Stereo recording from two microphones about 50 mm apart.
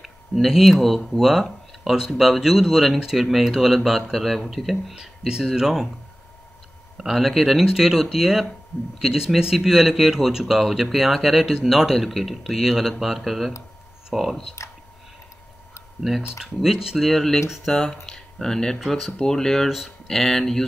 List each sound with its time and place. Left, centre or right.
0.0 s speech: centre
7.0 s speech: centre
14.6 s a sound: left
16.3 s speech: centre
17.0 s speech: centre